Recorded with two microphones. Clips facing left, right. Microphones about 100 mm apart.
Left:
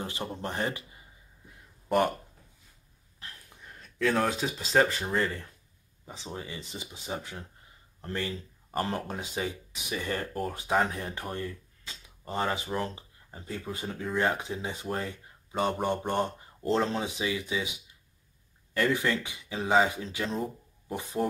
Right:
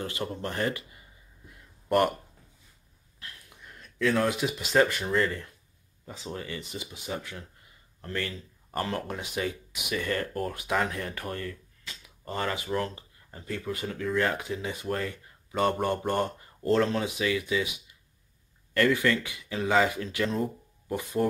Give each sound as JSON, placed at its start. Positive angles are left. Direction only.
{"t": 0.0, "sound": "speech", "side_deg": 20}
{"t": 3.2, "sound": "speech", "side_deg": 35}
{"t": 20.2, "sound": "speech", "side_deg": 0}
{"t": 20.9, "sound": "speech", "side_deg": 15}